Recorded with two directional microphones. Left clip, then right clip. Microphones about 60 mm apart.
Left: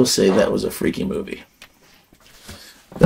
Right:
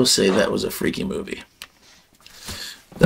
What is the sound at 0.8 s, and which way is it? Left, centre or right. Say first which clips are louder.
Speech: left 2 dB; right.